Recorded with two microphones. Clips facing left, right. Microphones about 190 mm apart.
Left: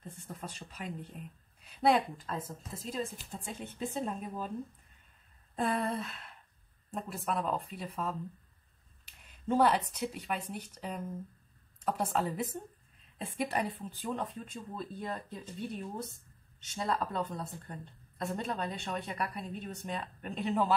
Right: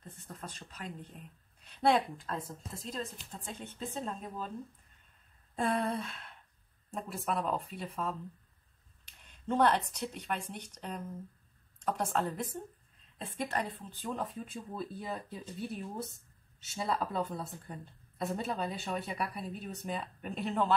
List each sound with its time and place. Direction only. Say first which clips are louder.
0.0 s a sound: left 2 dB; 10° left (ahead or behind)
1.6 s a woman's voice: left 1 dB; 5° left (ahead or behind)
5.6 s a woman's voice: even; centre (ahead or behind)
14.1 s a woman's voice: even; 5° right (ahead or behind)